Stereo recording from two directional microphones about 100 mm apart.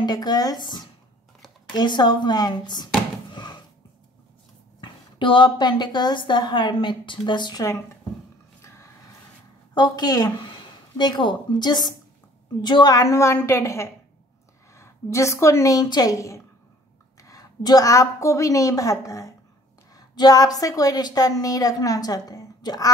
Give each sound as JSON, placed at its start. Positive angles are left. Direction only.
{"t": 0.0, "sound": "a woman's voice", "side_deg": 45}
{"t": 3.3, "sound": "a sound", "side_deg": 50}
{"t": 4.7, "sound": "a woman's voice", "side_deg": 55}
{"t": 9.8, "sound": "a woman's voice", "side_deg": 45}